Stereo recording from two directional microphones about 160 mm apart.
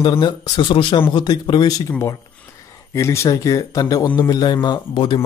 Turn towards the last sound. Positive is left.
turn(degrees=30)  # may be behind; listen again after turning